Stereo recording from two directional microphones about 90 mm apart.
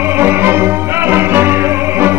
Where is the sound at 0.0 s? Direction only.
25° right (ahead or behind).